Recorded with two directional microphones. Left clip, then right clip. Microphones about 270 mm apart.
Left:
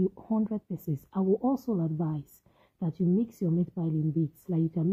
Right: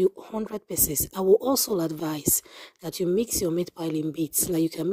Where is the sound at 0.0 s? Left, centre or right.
Right.